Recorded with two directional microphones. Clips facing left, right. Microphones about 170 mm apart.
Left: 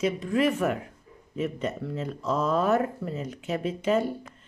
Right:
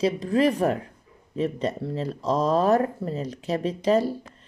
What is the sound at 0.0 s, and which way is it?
Speech, 35° right (ahead or behind).